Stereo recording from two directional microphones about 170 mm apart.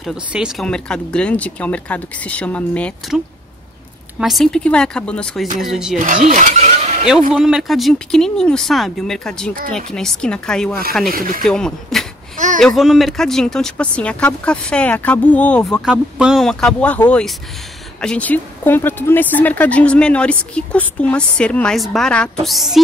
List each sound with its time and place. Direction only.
0.0 s speech: 5° right (ahead or behind)
4.2 s speech: centre (ahead or behind)
5.9 s speech: 50° right (ahead or behind)
7.1 s speech: 5° right (ahead or behind)
11.1 s speech: 55° right (ahead or behind)
11.4 s speech: 5° left (ahead or behind)
15.8 s speech: 5° right (ahead or behind)